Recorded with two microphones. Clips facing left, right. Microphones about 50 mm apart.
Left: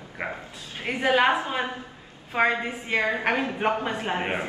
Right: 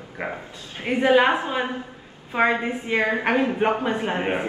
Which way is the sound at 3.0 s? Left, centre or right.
Right.